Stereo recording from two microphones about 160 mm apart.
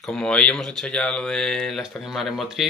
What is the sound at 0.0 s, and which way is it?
Speech, 5° left (ahead or behind).